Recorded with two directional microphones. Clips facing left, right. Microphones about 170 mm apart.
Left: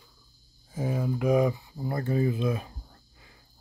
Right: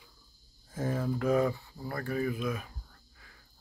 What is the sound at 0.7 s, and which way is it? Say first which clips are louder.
Speech: left 2 dB; 10° left (ahead or behind).